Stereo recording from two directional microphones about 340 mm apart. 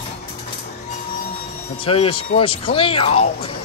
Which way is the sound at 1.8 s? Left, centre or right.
Centre.